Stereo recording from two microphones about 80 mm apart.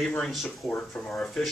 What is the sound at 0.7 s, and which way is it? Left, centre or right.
Speech, centre.